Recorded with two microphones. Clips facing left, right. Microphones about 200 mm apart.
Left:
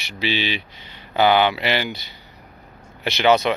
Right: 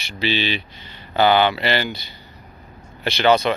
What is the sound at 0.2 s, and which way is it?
Speech, 10° left (ahead or behind).